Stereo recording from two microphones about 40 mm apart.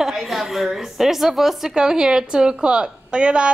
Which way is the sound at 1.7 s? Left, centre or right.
Centre.